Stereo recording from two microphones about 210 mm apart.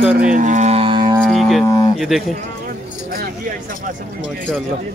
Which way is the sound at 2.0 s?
Centre (ahead or behind).